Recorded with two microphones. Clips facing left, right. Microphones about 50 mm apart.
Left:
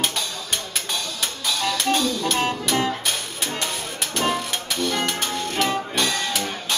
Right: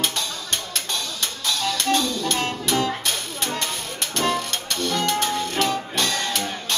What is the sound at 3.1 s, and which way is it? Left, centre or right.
Music, centre.